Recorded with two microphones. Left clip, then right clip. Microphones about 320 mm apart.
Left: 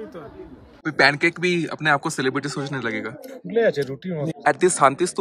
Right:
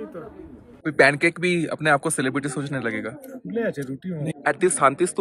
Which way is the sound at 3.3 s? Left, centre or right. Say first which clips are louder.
Left 8 dB; left.